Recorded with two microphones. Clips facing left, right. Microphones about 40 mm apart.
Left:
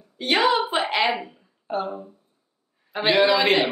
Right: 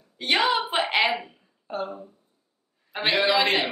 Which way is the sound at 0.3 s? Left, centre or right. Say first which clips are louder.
Left 3 dB; centre.